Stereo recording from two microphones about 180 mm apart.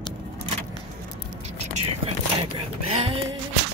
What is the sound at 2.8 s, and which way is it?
Music, 30° right (ahead or behind).